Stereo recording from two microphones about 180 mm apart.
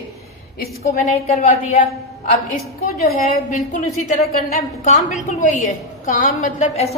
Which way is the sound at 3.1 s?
45° left (ahead or behind).